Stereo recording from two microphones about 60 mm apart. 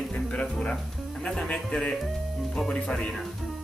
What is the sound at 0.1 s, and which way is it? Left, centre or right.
Music, centre.